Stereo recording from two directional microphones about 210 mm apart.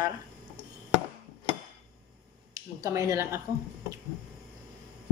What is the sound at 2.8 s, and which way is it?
Speech, 15° right (ahead or behind).